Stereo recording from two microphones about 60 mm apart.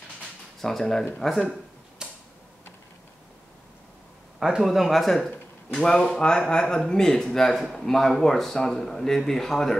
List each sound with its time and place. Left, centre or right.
0.6 s speech: centre
2.0 s tick-tock: centre
4.4 s speech: centre